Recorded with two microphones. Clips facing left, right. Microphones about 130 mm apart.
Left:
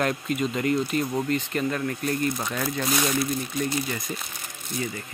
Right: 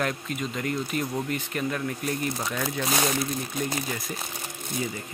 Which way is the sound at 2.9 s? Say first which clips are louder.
Even; 30° right (ahead or behind).